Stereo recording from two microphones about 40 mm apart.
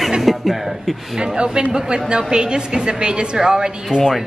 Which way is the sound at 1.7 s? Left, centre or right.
Centre.